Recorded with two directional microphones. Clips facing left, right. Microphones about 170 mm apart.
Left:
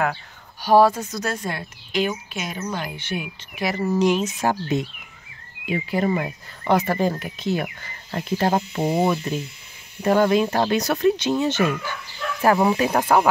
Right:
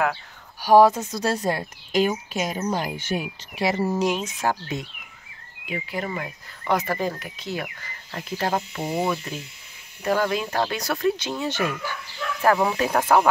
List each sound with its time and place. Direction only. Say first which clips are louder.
0.0 s speech: even; centre (ahead or behind)
0.7 s speech: right 1 dB; 15° right (ahead or behind)
1.1 s speech: right 3 dB; 30° right (ahead or behind)
3.5 s speech: even; 30° right (ahead or behind)
4.0 s speech: left 4 dB; centre (ahead or behind)
4.4 s speech: left 4 dB; 20° left (ahead or behind)
5.7 s speech: left 7 dB; 30° left (ahead or behind); by 13.3 s 10° left (ahead or behind)